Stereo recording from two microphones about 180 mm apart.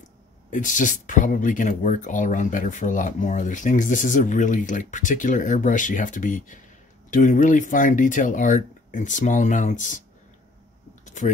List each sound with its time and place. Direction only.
0.5 s speech: 45° left (ahead or behind)
11.1 s typing: 45° left (ahead or behind)